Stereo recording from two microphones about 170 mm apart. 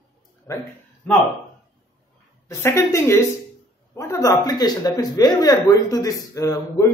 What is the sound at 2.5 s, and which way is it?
A man's voice, 15° left (ahead or behind).